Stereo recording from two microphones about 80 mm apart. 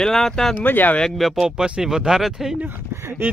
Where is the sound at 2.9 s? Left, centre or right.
Right.